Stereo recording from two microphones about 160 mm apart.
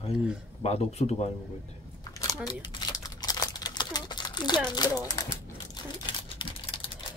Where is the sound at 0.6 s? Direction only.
40° left (ahead or behind).